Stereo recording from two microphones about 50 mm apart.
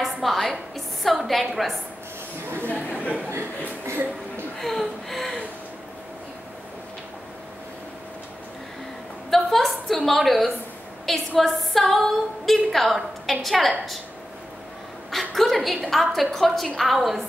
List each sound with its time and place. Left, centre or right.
0.0 s a woman's voice: centre
2.7 s speech: left
3.3 s speech: right
4.6 s speech: centre
9.3 s a sound: centre
11.1 s a woman's voice: centre
15.0 s a woman's voice: centre